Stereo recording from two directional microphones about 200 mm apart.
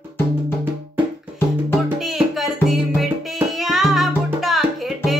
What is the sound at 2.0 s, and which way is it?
Music, centre (ahead or behind).